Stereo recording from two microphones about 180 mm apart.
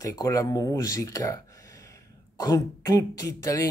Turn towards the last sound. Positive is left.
turn(degrees=15)  # may be behind; listen again after turning